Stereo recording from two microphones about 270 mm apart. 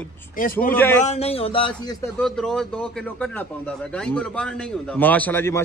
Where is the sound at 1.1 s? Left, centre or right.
Left.